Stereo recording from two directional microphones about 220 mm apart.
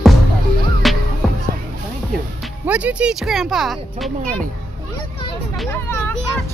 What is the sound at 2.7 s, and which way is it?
Speech, 5° right (ahead or behind).